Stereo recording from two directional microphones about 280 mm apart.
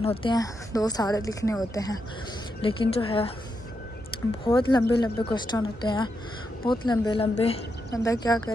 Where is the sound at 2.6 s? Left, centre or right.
Centre.